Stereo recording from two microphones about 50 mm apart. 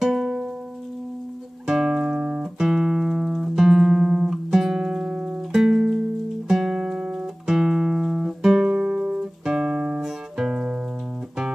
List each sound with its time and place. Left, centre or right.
0.0 s music: centre
1.7 s music: centre
7.4 s guitar: centre
8.6 s music: right